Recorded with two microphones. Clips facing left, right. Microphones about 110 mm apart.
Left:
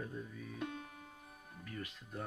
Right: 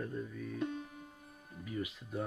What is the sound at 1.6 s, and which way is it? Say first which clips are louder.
Speech: right 7 dB; 10° right (ahead or behind).